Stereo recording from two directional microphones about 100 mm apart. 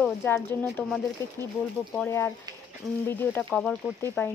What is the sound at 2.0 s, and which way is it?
Speech, 25° left (ahead or behind).